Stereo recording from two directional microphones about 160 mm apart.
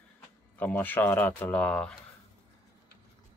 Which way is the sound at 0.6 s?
10° left (ahead or behind).